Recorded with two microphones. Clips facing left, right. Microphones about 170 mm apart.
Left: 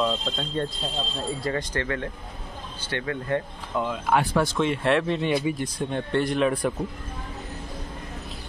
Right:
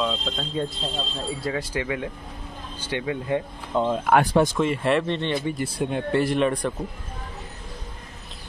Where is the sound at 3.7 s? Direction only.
30° right (ahead or behind).